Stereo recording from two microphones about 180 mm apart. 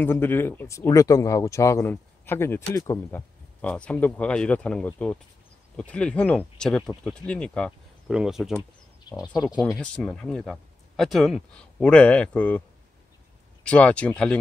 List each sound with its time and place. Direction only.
0.0 s speech: 10° left (ahead or behind)
13.7 s speech: 5° left (ahead or behind)